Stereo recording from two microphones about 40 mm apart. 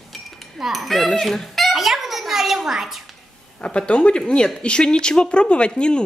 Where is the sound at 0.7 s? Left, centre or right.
Centre.